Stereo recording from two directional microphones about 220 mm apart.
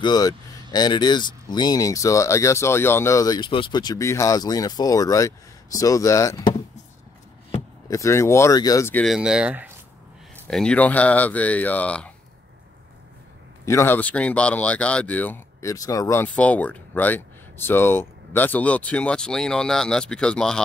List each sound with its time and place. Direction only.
0.0 s speech: 20° left (ahead or behind)
7.9 s speech: 15° left (ahead or behind)
9.0 s speech: centre (ahead or behind)
13.7 s speech: 10° left (ahead or behind)